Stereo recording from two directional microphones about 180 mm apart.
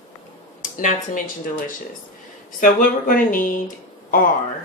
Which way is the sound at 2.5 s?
50° left (ahead or behind).